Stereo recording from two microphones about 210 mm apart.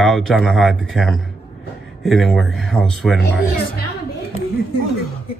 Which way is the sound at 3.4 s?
45° left (ahead or behind).